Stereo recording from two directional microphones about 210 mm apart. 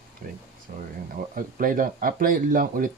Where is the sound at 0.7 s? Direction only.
45° right (ahead or behind).